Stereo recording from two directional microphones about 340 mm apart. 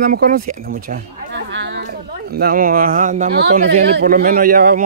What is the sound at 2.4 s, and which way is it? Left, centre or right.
A man's voice, right.